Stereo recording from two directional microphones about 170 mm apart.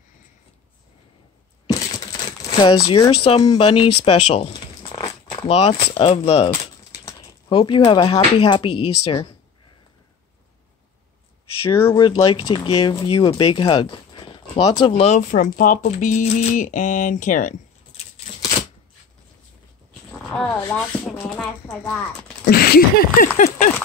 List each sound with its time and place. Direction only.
1.7 s crumpling: 20° left (ahead or behind)
3.5 s speech: 30° left (ahead or behind)
4.9 s a sound: 20° left (ahead or behind)
5.5 s speech: 35° left (ahead or behind)
6.6 s speech: 20° left (ahead or behind)
11.9 s speech: 25° left (ahead or behind); by 18.0 s 50° left (ahead or behind)
20.3 s speech: 5° left (ahead or behind)
22.5 s a sound: 65° left (ahead or behind); by 23.7 s 45° left (ahead or behind)